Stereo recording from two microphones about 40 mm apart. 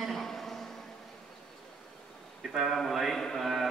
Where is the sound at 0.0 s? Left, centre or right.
Centre.